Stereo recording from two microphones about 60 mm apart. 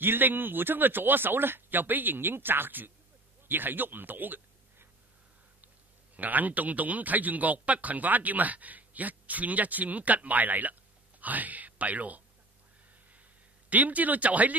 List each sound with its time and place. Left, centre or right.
0.0 s speech: right
6.1 s a man's voice: right
13.7 s a man's voice: right